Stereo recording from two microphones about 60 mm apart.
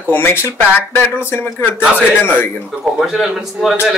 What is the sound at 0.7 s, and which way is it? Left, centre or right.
Speech, left.